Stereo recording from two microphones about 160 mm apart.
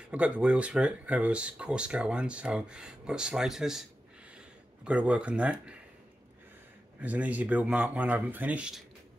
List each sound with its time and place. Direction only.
0.1 s speech: 10° right (ahead or behind)
4.8 s speech: 5° right (ahead or behind)
7.0 s speech: 10° right (ahead or behind)